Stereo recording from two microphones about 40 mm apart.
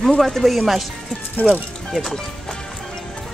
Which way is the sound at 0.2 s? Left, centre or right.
Centre.